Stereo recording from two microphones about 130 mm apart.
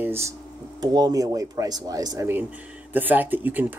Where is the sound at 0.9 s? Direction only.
30° right (ahead or behind).